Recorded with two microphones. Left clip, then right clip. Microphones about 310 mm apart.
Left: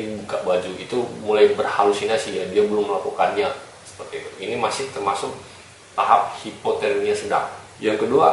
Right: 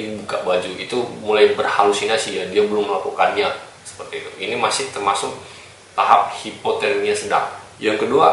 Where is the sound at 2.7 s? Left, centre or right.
Left.